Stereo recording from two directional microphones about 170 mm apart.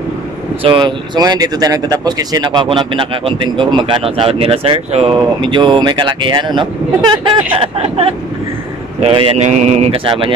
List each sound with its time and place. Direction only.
0.7 s speech: 30° right (ahead or behind)